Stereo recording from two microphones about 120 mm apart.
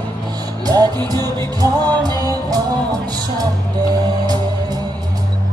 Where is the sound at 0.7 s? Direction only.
35° right (ahead or behind).